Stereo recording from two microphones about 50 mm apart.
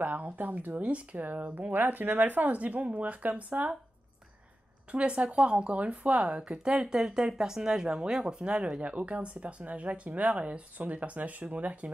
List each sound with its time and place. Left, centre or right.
0.0 s speech: right
4.9 s speech: right